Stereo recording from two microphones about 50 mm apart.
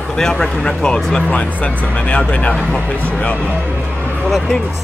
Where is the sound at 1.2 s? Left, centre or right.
Left.